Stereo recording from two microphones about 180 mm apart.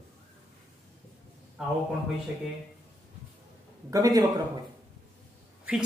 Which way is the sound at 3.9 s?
20° right (ahead or behind).